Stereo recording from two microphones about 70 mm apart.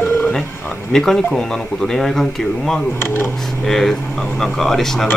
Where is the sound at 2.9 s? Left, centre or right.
Left.